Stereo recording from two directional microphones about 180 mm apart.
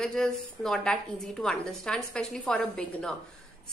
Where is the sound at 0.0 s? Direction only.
5° left (ahead or behind).